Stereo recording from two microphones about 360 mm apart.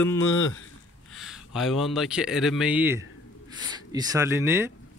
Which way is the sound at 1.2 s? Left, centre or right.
Centre.